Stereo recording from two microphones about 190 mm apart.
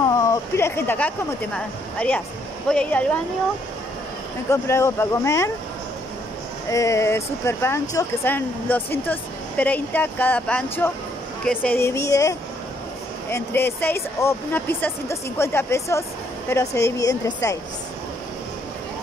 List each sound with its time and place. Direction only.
0.0 s speech: 15° left (ahead or behind)
4.5 s speech: 15° left (ahead or behind)
6.7 s speech: 15° left (ahead or behind)